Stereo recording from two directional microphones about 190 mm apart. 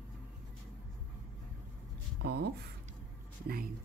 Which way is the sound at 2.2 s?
60° right (ahead or behind).